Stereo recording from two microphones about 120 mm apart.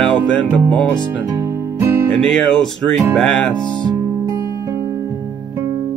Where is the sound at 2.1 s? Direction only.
10° left (ahead or behind).